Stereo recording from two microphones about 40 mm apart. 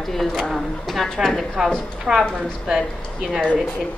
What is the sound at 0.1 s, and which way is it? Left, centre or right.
A woman's voice, centre.